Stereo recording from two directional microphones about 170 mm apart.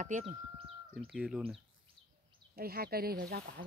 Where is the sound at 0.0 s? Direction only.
45° right (ahead or behind).